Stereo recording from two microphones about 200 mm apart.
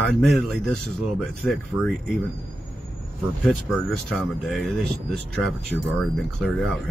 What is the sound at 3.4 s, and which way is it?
Speech, centre (ahead or behind).